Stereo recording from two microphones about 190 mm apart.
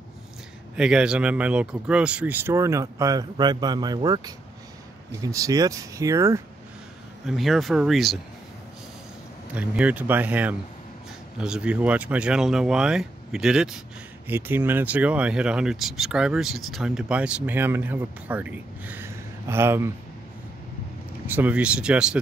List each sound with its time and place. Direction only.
0.7 s speech: 5° right (ahead or behind)
7.2 s speech: centre (ahead or behind)
9.5 s speech: 5° right (ahead or behind)
21.3 s speech: 10° right (ahead or behind)